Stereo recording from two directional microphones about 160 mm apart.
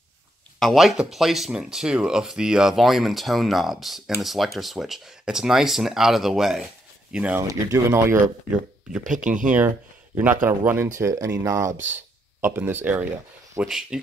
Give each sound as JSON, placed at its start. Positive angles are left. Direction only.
{"t": 0.6, "sound": "a man's voice", "side_deg": 0}
{"t": 7.4, "sound": "a man's voice", "side_deg": -20}
{"t": 9.0, "sound": "speech", "side_deg": -55}
{"t": 10.1, "sound": "a man's voice", "side_deg": -10}